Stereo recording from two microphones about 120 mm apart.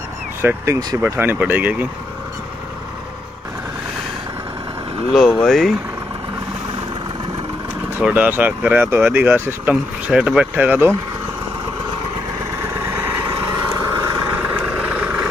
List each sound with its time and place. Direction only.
0.4 s speech: 20° right (ahead or behind)
5.1 s speech: centre (ahead or behind)
8.0 s speech: 15° right (ahead or behind)
12.6 s vehicle: 25° right (ahead or behind)
14.3 s vehicle: 10° right (ahead or behind)